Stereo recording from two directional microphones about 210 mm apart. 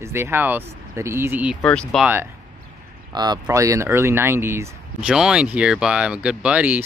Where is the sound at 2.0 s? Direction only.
10° right (ahead or behind).